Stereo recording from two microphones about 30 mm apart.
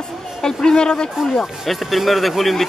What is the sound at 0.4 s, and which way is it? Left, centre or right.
Speech, centre.